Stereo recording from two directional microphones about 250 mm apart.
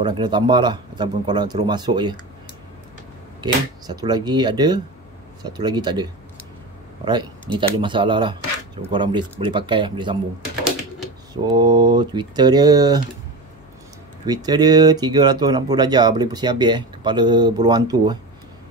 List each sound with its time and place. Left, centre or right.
0.0 s speech: centre
3.3 s speech: centre
7.1 s speech: centre
11.4 s speech: centre
14.2 s speech: centre